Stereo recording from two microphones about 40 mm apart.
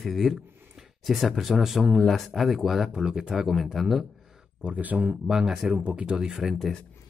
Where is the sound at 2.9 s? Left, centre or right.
Centre.